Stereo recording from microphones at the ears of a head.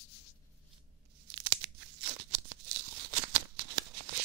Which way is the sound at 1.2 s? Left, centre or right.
Right.